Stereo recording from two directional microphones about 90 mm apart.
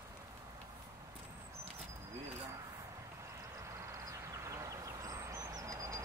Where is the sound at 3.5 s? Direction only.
30° right (ahead or behind).